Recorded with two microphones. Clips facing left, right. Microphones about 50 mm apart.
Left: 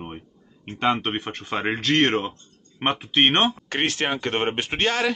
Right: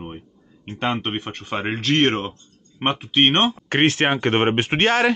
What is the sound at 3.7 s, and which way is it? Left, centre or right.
Speech, right.